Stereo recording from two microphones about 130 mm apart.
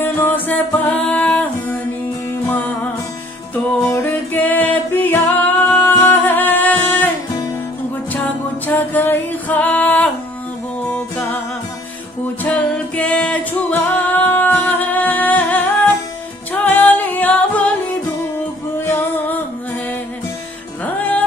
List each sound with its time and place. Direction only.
0.0 s music: 15° left (ahead or behind)
2.5 s music: 15° left (ahead or behind)
3.9 s music: 15° left (ahead or behind)
8.1 s music: 15° left (ahead or behind)
12.4 s music: 10° left (ahead or behind)
18.9 s music: 15° left (ahead or behind)